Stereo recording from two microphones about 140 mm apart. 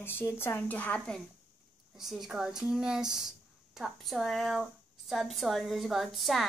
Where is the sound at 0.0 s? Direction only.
15° left (ahead or behind).